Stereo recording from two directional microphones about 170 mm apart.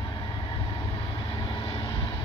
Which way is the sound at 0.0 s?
20° left (ahead or behind).